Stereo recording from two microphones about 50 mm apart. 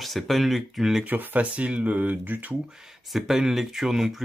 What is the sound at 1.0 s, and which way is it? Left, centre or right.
Speech, right.